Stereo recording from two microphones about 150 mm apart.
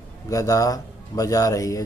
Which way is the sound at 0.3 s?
25° left (ahead or behind).